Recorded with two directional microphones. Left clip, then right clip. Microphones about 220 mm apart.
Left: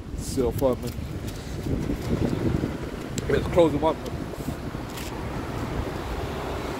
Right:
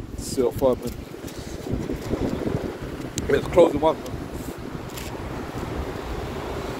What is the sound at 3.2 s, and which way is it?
Speech, 45° right (ahead or behind).